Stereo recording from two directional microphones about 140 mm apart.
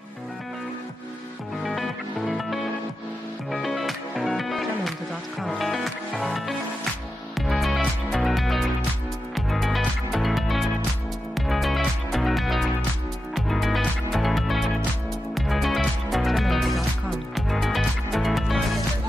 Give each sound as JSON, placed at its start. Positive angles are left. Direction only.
{"t": 1.6, "sound": "music", "side_deg": 0}